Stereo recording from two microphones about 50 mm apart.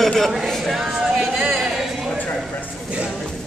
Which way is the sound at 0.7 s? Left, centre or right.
Centre.